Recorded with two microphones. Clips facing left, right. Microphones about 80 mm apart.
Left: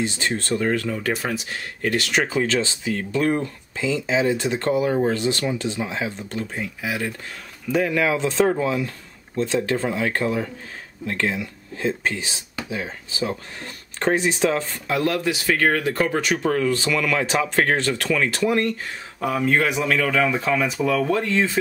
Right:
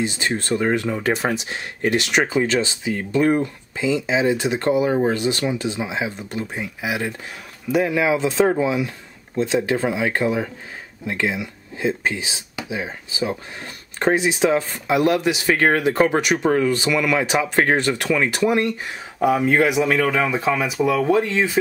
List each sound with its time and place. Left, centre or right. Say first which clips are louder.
0.4 s speech: right 2 dB; right